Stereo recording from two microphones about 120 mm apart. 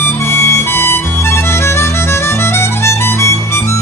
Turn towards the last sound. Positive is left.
turn(degrees=25)  # may be behind; listen again after turning